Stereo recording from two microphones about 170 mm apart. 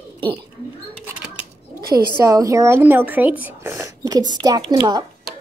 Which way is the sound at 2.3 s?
20° right (ahead or behind).